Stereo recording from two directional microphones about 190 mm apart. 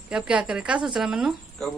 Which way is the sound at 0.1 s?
5° right (ahead or behind).